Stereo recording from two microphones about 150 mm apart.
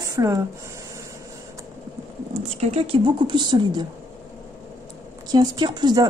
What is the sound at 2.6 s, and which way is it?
A woman's voice, 45° right (ahead or behind).